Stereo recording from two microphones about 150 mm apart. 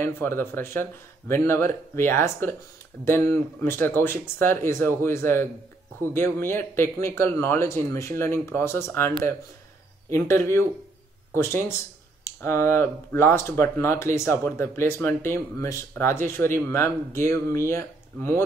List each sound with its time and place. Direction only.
0.0 s speech: 15° left (ahead or behind)
12.3 s speech: 15° left (ahead or behind)